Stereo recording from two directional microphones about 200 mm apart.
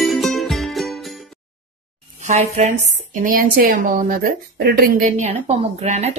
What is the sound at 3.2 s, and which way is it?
A woman's voice, 45° right (ahead or behind).